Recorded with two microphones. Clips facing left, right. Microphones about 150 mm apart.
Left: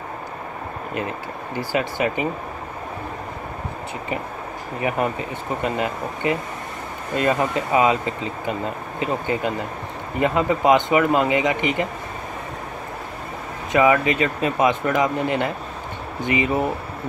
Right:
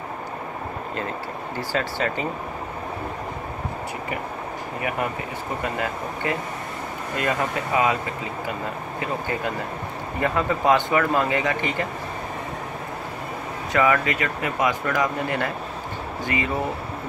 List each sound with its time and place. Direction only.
1.6 s speech: 15° left (ahead or behind)
4.8 s speech: 25° left (ahead or behind)
13.7 s speech: 20° left (ahead or behind)